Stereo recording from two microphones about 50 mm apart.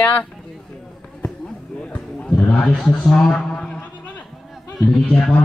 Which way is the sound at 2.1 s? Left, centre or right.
Centre.